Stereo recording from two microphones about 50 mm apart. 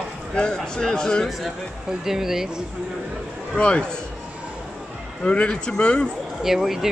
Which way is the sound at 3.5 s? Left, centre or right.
Centre.